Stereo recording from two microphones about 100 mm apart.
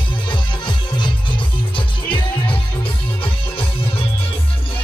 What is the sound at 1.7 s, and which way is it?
Music, 55° left (ahead or behind).